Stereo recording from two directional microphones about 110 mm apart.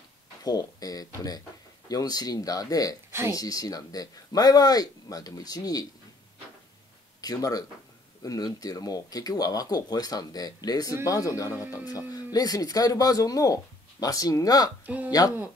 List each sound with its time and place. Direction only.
0.4 s speech: 35° left (ahead or behind)
7.2 s speech: 35° left (ahead or behind)